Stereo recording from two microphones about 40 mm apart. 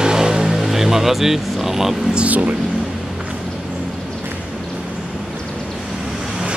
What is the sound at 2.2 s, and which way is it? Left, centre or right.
Speech, right.